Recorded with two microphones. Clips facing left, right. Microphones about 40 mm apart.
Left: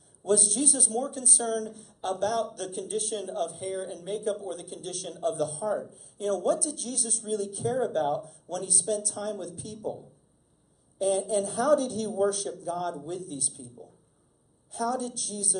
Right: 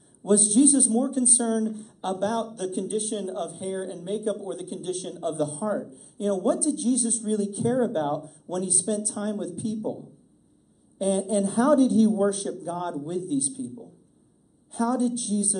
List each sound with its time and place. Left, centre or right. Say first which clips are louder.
0.2 s a man's voice: right 7 dB; right
9.8 s speech: right 4 dB; centre
11.0 s a man's voice: right 2 dB; right
14.7 s a man's voice: right 5 dB; right